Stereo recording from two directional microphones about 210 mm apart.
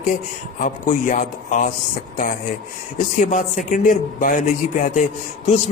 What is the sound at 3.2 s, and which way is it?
Speech, 35° left (ahead or behind).